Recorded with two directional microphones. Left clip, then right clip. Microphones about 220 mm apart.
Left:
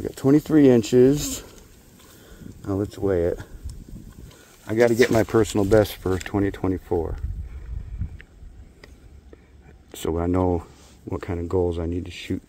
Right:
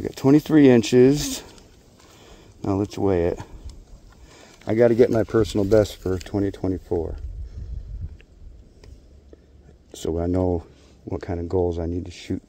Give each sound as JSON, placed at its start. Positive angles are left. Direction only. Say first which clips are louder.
{"t": 0.0, "sound": "speech", "louder": "right 1 dB", "side_deg": -20}
{"t": 2.6, "sound": "speech", "louder": "right 2 dB", "side_deg": -20}
{"t": 4.6, "sound": "speech", "louder": "right 1 dB", "side_deg": -5}
{"t": 9.8, "sound": "speech", "louder": "even", "side_deg": -10}